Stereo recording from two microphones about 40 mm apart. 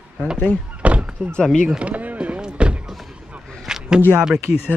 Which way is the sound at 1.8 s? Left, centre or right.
Right.